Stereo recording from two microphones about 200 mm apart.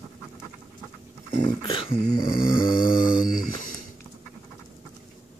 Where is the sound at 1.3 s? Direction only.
25° left (ahead or behind).